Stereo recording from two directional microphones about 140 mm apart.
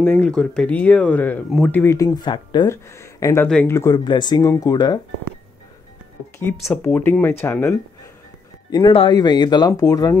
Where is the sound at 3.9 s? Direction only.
30° left (ahead or behind).